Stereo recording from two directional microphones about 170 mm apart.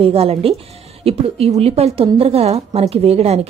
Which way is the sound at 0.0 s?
35° right (ahead or behind).